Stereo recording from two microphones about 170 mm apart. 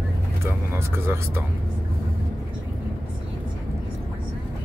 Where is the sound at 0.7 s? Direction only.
15° right (ahead or behind).